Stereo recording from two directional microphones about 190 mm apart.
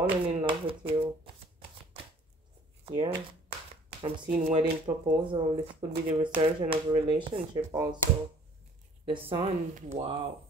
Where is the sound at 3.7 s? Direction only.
30° right (ahead or behind).